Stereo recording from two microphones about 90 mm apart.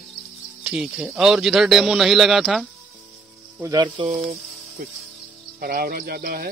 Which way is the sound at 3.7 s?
60° right (ahead or behind).